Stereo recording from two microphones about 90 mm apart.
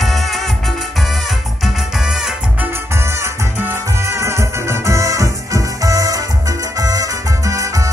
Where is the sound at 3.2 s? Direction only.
30° right (ahead or behind).